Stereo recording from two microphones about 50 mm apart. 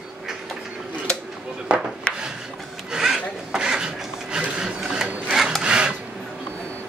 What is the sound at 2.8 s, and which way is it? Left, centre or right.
Filing, centre.